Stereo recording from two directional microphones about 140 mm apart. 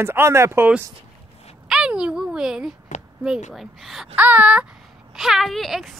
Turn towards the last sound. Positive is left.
turn(degrees=0)  # may be behind; listen again after turning